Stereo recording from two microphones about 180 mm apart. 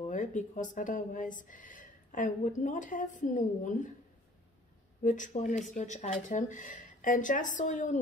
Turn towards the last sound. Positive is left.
turn(degrees=45)  # may be behind; listen again after turning